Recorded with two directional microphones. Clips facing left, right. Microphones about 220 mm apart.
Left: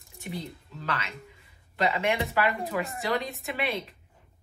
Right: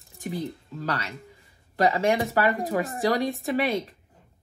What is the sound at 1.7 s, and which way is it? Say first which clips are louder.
A woman's voice: right 5 dB; 45° right (ahead or behind).